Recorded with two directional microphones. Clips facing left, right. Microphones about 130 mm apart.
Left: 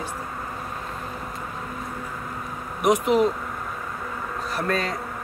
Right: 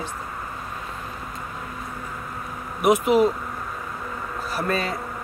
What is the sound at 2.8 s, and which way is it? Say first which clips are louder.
Speech: right 2 dB; 5° right (ahead or behind).